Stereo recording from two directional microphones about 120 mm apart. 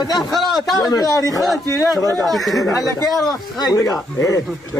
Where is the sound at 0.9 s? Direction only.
30° left (ahead or behind).